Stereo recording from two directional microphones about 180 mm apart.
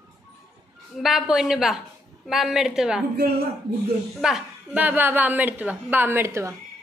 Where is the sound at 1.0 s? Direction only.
Centre (ahead or behind).